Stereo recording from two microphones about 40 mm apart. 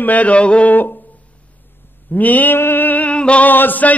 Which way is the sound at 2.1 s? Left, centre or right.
Left.